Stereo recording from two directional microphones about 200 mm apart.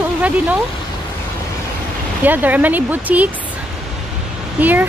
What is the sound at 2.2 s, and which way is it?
Speech, 10° right (ahead or behind).